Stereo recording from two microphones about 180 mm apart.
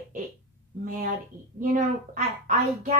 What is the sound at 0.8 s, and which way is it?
Speech, 45° right (ahead or behind).